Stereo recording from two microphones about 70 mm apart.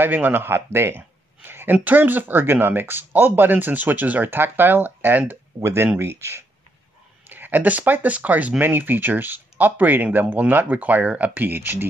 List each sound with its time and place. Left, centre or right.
0.0 s speech: right
5.6 s speech: right
7.2 s speech: right